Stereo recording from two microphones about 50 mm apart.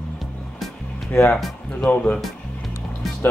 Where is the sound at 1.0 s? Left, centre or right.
Left.